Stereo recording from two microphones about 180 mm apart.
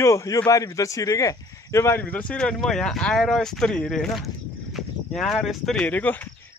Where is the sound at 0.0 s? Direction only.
15° left (ahead or behind).